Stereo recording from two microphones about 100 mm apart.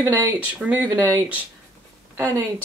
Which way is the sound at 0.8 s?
35° right (ahead or behind).